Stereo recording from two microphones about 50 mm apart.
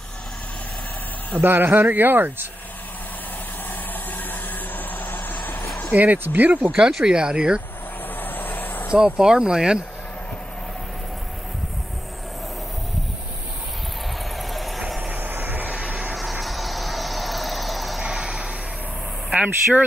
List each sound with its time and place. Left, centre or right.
1.4 s speech: right
4.2 s vehicle: left
5.9 s speech: right
6.9 s speech: centre
7.2 s speech: centre
8.2 s vehicle: left
8.9 s speech: centre
14.3 s vehicle: centre
15.1 s vehicle: right
15.7 s a sound: right
16.2 s vehicle: centre
18.0 s vehicle: centre
19.3 s speech: right